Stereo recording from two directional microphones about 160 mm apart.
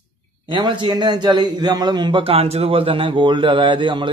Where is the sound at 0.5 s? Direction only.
30° right (ahead or behind).